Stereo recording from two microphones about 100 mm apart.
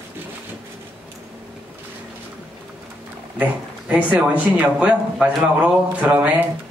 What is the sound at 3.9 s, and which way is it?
Speech, 15° right (ahead or behind).